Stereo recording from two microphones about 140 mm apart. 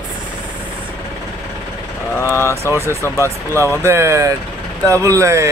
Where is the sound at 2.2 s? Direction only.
20° left (ahead or behind).